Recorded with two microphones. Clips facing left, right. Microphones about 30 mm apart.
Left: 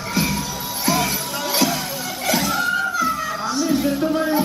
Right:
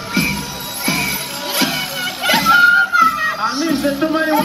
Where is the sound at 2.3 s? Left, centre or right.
Right.